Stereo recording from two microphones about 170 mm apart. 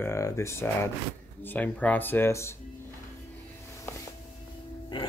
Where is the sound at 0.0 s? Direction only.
15° left (ahead or behind).